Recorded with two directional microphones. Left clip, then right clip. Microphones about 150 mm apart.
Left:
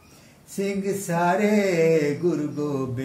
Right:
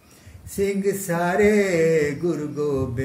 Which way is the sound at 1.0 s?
30° right (ahead or behind).